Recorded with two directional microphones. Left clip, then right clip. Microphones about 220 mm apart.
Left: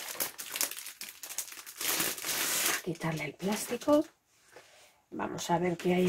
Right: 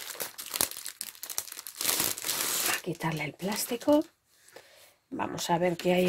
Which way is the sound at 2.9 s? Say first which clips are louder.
Right 2 dB; 50° right (ahead or behind).